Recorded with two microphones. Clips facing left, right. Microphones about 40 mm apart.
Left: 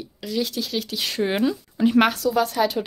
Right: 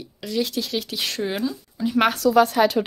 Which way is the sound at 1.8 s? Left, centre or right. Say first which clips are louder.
Left 6 dB; left.